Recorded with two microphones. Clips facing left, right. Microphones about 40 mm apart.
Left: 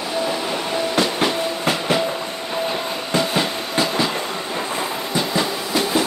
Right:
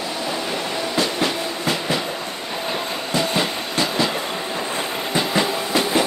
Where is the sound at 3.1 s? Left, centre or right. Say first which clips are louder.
Left 1 dB; centre.